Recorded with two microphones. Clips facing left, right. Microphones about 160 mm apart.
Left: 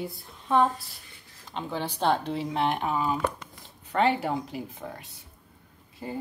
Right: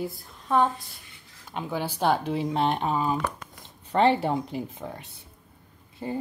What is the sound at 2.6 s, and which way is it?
Speech, 30° right (ahead or behind).